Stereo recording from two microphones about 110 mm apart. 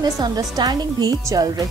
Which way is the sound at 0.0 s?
35° right (ahead or behind).